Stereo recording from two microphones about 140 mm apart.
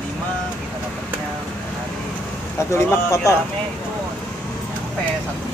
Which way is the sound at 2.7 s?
20° left (ahead or behind).